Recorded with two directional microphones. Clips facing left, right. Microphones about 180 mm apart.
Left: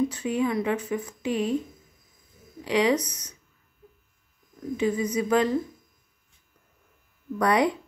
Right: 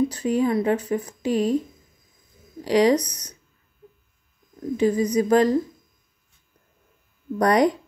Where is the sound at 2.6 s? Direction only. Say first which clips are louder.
Right 5 dB; 40° right (ahead or behind).